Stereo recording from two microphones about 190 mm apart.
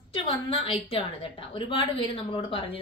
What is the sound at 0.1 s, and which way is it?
A woman's voice, 25° left (ahead or behind).